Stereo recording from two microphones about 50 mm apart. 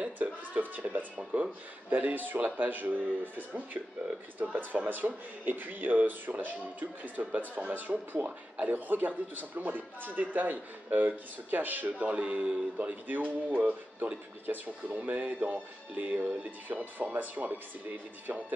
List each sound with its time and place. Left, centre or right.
0.0 s speech: right